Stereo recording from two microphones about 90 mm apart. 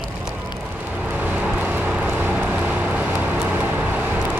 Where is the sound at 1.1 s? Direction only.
20° right (ahead or behind).